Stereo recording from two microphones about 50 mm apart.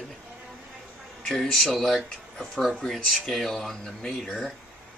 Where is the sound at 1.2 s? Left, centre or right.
Centre.